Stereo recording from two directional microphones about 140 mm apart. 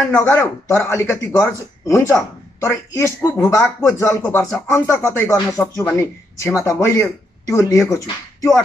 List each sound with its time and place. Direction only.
0.1 s speech: 20° left (ahead or behind)